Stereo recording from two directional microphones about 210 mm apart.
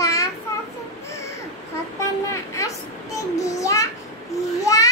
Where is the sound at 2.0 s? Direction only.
15° left (ahead or behind).